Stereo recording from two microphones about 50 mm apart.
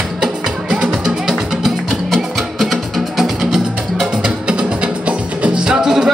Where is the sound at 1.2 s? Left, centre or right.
Centre.